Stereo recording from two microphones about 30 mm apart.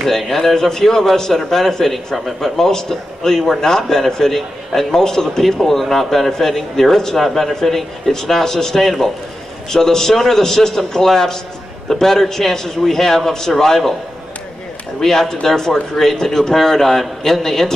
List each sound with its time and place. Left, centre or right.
0.6 s a man's voice: centre
4.3 s a man's voice: centre
4.9 s a man's voice: centre
7.2 s a man's voice: centre
15.0 s a man's voice: centre